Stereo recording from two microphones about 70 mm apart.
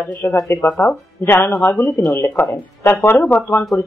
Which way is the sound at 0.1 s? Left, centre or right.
Left.